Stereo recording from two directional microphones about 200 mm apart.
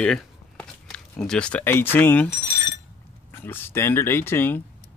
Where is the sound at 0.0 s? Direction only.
5° left (ahead or behind).